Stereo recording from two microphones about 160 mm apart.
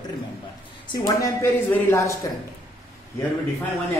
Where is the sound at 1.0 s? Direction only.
20° left (ahead or behind).